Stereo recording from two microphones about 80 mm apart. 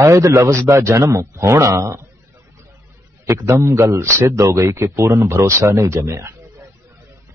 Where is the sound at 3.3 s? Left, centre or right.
Right.